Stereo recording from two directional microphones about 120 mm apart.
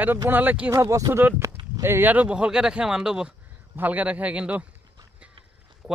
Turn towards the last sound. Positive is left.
turn(degrees=0)  # may be behind; listen again after turning